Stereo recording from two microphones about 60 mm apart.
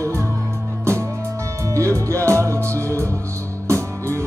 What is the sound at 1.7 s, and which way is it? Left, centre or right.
Music, right.